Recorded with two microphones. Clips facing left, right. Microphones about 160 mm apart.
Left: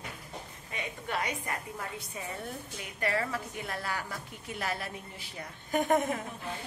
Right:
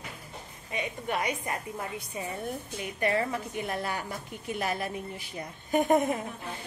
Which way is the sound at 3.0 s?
20° right (ahead or behind).